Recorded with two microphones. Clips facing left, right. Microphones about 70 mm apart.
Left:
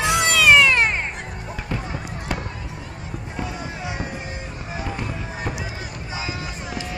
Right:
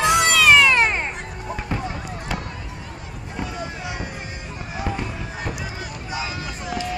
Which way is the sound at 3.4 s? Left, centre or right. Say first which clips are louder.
Right 1 dB; centre.